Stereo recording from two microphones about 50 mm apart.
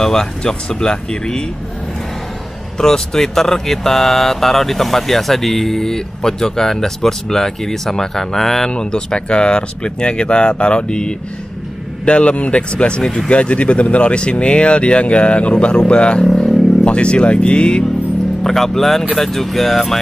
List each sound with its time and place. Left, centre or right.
0.0 s speech: centre
2.8 s speech: centre
8.7 s speech: centre
16.3 s a sound: centre
16.8 s speech: left
18.4 s speech: centre